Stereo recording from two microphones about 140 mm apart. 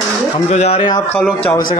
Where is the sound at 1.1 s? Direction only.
10° left (ahead or behind).